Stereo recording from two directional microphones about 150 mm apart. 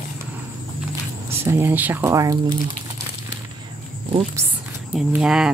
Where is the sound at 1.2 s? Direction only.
15° right (ahead or behind).